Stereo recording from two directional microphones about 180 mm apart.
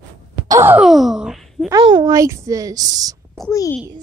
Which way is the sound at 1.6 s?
20° right (ahead or behind).